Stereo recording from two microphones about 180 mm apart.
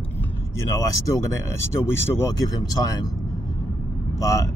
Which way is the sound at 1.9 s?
15° left (ahead or behind).